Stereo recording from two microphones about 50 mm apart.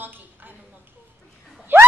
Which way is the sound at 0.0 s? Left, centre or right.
Right.